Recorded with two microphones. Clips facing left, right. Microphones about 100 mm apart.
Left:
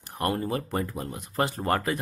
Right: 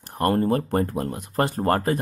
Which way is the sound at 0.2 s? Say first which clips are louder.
Right 7 dB; 45° right (ahead or behind).